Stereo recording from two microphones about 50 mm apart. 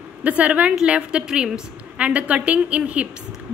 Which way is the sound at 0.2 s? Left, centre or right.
Right.